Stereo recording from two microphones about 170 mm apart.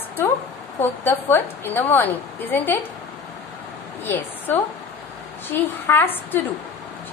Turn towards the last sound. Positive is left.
turn(degrees=15)  # may be behind; listen again after turning